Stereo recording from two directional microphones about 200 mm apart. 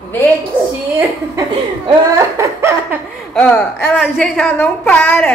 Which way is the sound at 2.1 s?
15° right (ahead or behind).